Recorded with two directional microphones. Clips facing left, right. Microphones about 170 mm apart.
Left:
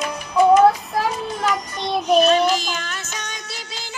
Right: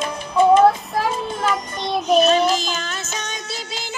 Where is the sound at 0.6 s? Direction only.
Centre (ahead or behind).